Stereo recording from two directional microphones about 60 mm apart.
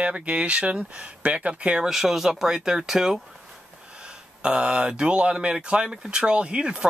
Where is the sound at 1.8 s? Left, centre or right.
Centre.